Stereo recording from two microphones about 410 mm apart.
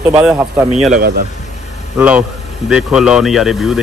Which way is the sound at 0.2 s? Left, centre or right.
Centre.